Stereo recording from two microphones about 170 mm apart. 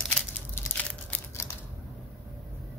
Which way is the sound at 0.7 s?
10° left (ahead or behind).